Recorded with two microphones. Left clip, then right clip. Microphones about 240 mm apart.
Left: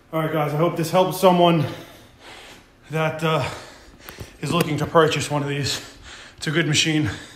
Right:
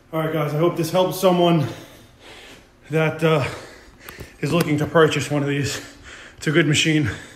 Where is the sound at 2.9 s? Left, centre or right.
Centre.